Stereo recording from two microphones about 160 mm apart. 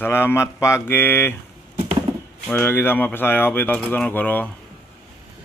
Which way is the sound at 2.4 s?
15° left (ahead or behind).